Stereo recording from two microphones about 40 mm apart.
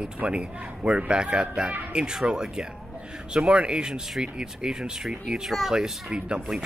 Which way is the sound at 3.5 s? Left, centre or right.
Right.